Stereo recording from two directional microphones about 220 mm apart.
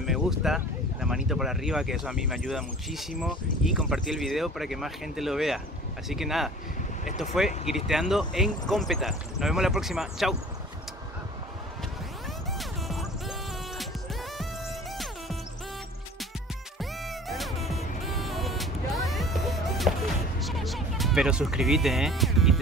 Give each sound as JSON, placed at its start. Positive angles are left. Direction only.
{"t": 0.0, "sound": "speech", "side_deg": 0}
{"t": 12.5, "sound": "music", "side_deg": 0}
{"t": 17.3, "sound": "music", "side_deg": 0}